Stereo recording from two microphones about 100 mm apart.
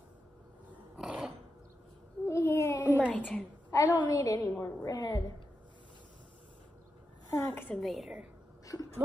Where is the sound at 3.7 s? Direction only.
40° left (ahead or behind).